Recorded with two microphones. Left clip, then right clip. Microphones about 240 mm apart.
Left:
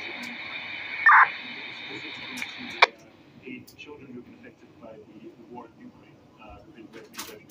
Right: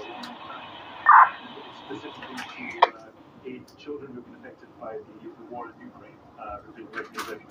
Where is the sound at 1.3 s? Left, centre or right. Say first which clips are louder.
Even; left.